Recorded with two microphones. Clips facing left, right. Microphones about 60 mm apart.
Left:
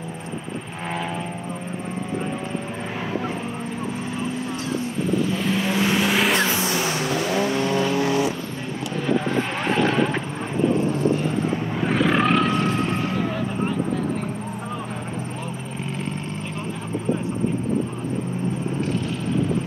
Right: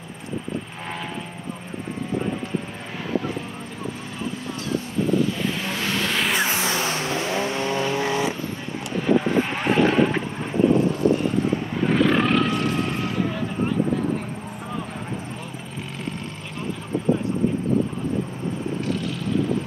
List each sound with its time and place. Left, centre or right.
5.7 s vehicle: centre
6.5 s vehicle: right
11.8 s vehicle: centre